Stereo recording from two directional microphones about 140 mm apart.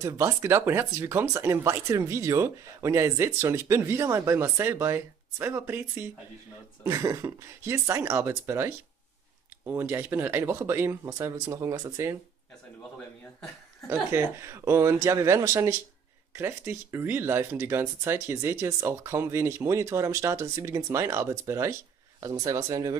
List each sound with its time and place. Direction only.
0.0 s speech: 20° right (ahead or behind)
13.8 s speech: 20° right (ahead or behind)